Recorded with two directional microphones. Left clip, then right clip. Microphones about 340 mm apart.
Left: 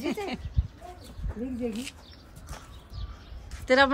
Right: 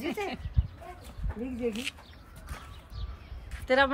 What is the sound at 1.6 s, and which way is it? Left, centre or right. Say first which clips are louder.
Speech: right 3 dB; centre.